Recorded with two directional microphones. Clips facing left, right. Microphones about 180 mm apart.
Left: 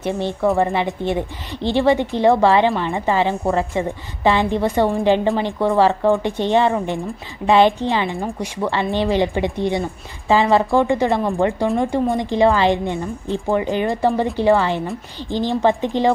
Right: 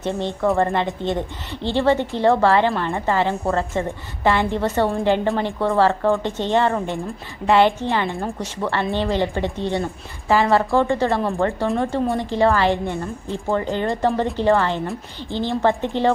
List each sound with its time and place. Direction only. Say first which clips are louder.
0.0 s a woman's voice: left 2 dB; 10° left (ahead or behind)